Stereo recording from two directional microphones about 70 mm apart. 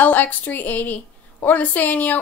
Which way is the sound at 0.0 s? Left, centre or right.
Left.